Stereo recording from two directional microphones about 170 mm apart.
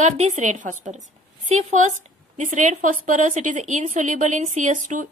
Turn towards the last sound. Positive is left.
turn(degrees=-45)  # may be behind; listen again after turning